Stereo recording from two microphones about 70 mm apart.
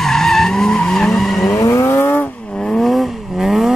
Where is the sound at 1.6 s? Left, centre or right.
Left.